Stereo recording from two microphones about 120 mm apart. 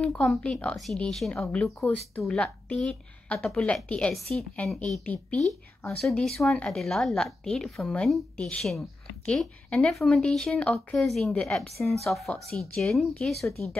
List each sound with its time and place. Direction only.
0.0 s a woman's voice: 5° left (ahead or behind)
5.9 s speech: 5° left (ahead or behind)